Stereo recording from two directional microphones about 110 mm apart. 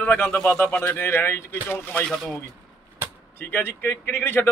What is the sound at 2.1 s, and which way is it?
Speech, centre (ahead or behind).